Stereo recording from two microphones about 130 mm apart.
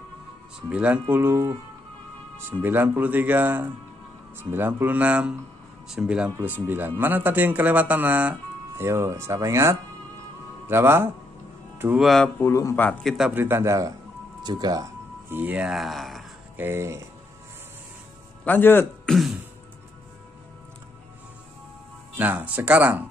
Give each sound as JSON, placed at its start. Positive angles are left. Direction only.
{"t": 0.7, "sound": "speech", "side_deg": -10}
{"t": 12.0, "sound": "speech", "side_deg": 0}
{"t": 12.4, "sound": "a man's voice", "side_deg": 25}
{"t": 13.3, "sound": "speech", "side_deg": -15}
{"t": 15.2, "sound": "speech", "side_deg": -15}
{"t": 16.5, "sound": "speech", "side_deg": -15}
{"t": 18.4, "sound": "a man's voice", "side_deg": 15}
{"t": 19.0, "sound": "throat clearing", "side_deg": 0}
{"t": 22.1, "sound": "speech", "side_deg": -15}